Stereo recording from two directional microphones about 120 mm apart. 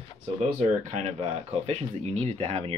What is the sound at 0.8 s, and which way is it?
Speech, 75° right (ahead or behind).